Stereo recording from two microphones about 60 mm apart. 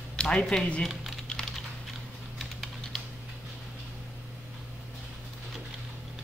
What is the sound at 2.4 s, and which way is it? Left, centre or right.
Typing, centre.